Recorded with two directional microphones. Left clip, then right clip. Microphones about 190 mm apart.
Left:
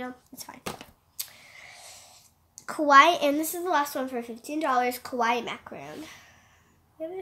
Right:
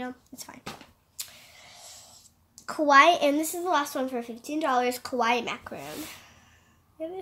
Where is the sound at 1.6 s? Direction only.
15° left (ahead or behind).